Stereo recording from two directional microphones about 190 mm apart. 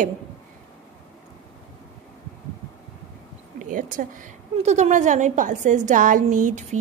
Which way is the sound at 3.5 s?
40° right (ahead or behind).